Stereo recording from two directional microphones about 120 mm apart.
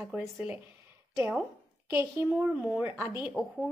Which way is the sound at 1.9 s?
25° right (ahead or behind).